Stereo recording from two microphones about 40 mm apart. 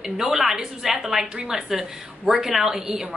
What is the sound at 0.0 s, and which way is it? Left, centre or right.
A woman's voice, centre.